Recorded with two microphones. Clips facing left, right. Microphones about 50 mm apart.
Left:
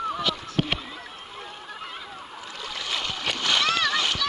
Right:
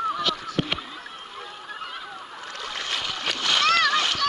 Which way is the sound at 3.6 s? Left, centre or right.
Right.